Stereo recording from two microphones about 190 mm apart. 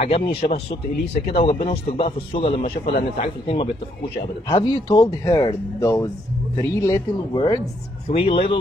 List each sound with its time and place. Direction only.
0.0 s a man's voice: 30° left (ahead or behind)
0.4 s speech: 55° left (ahead or behind)
1.3 s a man's voice: 30° left (ahead or behind)